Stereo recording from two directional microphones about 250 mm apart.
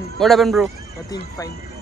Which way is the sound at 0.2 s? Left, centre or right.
Centre.